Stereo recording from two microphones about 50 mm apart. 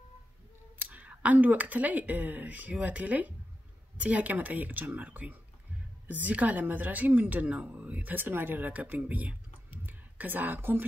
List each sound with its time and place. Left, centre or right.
0.7 s speech: right